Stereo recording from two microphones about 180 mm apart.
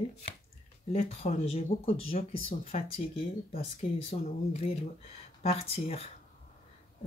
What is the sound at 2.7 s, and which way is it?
Speech, 30° left (ahead or behind).